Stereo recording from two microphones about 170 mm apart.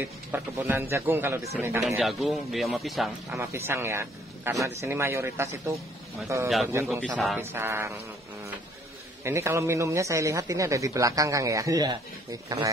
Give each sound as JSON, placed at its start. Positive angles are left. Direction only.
{"t": 0.3, "sound": "speech", "side_deg": -15}
{"t": 1.8, "sound": "speech", "side_deg": 0}
{"t": 3.3, "sound": "speech", "side_deg": -15}
{"t": 9.2, "sound": "speech", "side_deg": -15}